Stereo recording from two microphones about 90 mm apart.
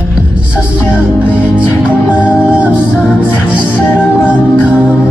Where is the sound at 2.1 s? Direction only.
10° right (ahead or behind).